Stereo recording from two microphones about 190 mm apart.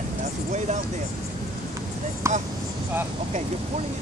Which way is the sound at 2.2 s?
15° right (ahead or behind).